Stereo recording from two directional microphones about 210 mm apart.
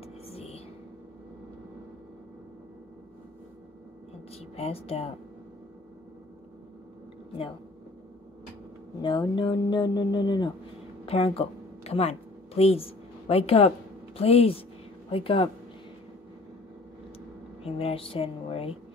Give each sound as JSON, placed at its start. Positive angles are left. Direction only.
{"t": 0.0, "sound": "whispering", "side_deg": 30}
{"t": 4.4, "sound": "speech", "side_deg": 30}
{"t": 9.0, "sound": "speech", "side_deg": 20}
{"t": 11.1, "sound": "a sound", "side_deg": 25}
{"t": 14.1, "sound": "speech", "side_deg": 30}
{"t": 17.6, "sound": "speech", "side_deg": 30}